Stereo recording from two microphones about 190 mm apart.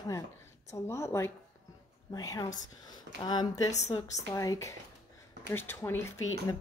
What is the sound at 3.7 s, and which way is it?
Speech, 35° left (ahead or behind).